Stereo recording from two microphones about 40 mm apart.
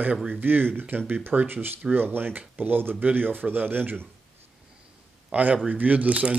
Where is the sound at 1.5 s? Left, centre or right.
Right.